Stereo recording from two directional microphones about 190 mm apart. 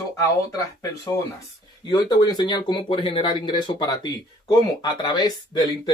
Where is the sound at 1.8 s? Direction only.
20° left (ahead or behind).